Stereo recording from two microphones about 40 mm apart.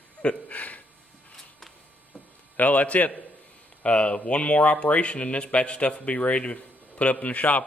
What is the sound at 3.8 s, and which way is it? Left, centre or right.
A man's voice, left.